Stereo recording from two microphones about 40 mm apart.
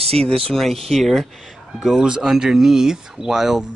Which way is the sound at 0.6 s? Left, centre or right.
Centre.